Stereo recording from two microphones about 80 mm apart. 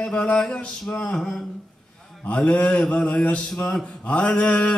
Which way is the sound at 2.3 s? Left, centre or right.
Centre.